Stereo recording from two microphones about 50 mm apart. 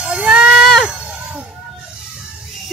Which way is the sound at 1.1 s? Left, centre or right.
Right.